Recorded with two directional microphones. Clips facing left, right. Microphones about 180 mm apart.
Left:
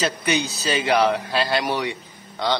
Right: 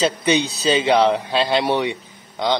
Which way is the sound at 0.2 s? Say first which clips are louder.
Right 5 dB; 30° right (ahead or behind).